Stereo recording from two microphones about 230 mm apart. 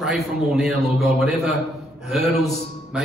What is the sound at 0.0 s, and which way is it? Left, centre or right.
A man's voice, centre.